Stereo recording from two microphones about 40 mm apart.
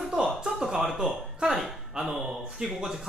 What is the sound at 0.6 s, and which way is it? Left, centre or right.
Speech, centre.